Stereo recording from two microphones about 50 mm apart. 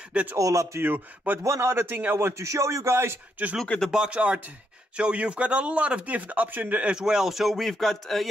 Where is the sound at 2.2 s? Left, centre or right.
Right.